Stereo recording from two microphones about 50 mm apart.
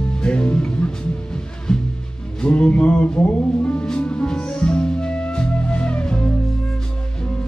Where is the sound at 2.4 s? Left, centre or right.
Left.